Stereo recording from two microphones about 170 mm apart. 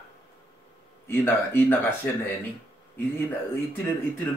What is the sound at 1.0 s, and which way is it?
Speech, 15° left (ahead or behind).